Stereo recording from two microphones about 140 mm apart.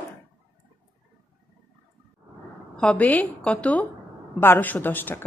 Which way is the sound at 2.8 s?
10° left (ahead or behind).